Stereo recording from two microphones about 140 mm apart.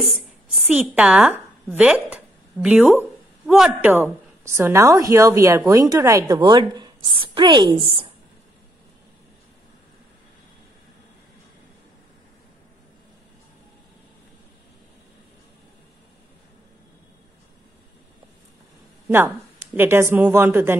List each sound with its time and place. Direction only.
0.7 s a woman's voice: 10° right (ahead or behind); by 7.8 s 35° right (ahead or behind)
19.0 s speech: 15° right (ahead or behind)